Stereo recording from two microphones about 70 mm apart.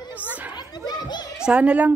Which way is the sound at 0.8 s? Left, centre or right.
Left.